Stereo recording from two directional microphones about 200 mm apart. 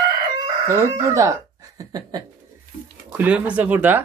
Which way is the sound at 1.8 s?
20° right (ahead or behind).